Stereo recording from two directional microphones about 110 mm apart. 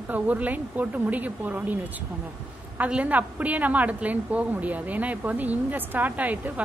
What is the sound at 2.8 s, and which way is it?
A woman's voice, 15° right (ahead or behind).